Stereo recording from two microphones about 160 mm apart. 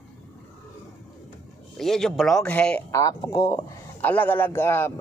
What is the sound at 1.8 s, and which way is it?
Speech, 5° left (ahead or behind).